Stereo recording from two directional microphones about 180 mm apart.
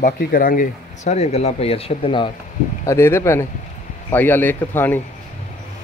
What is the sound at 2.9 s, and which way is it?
A man's voice, 15° left (ahead or behind).